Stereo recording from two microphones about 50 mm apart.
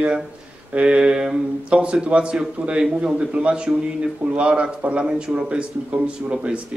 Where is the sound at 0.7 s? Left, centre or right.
Right.